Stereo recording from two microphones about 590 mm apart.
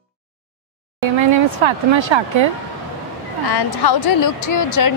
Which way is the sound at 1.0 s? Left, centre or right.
Right.